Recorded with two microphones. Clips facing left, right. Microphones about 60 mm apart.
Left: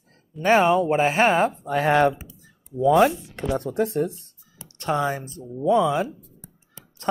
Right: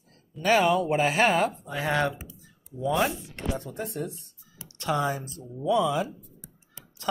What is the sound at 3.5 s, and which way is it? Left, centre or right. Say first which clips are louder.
Speech: left 14 dB; left.